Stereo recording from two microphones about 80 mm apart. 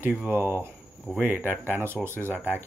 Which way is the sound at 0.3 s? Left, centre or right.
Right.